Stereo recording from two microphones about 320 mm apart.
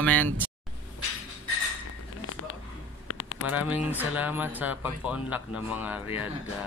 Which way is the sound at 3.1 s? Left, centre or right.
Left.